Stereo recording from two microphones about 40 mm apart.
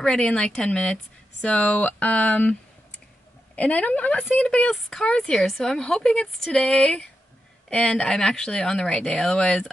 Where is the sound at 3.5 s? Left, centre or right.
Left.